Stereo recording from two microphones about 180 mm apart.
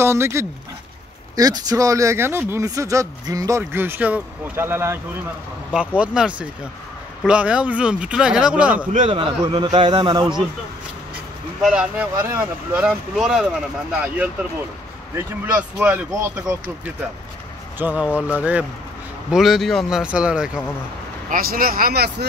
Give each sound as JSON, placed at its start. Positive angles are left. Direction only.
{"t": 0.0, "sound": "speech", "side_deg": -15}
{"t": 8.9, "sound": "speech", "side_deg": -35}
{"t": 11.6, "sound": "speech", "side_deg": -5}
{"t": 17.7, "sound": "speech", "side_deg": -10}
{"t": 21.3, "sound": "speech", "side_deg": -55}